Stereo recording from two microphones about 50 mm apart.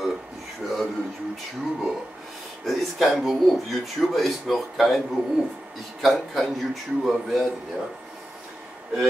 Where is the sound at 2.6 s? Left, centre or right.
Centre.